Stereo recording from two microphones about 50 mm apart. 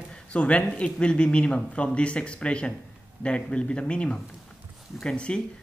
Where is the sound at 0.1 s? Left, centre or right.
Left.